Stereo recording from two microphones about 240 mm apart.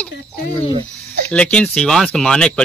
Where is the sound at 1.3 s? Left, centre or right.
Centre.